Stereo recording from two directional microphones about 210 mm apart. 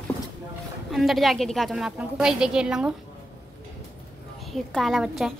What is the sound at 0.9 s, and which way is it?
A woman's voice, centre (ahead or behind).